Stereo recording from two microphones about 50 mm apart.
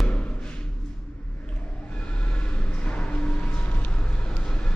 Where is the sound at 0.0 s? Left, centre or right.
Left.